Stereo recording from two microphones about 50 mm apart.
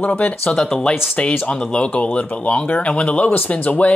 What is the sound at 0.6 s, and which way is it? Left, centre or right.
Speech, centre.